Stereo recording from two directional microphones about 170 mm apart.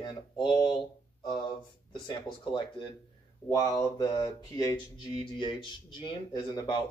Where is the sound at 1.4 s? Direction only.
25° left (ahead or behind).